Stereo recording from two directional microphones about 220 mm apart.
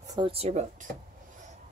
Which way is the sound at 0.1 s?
25° right (ahead or behind).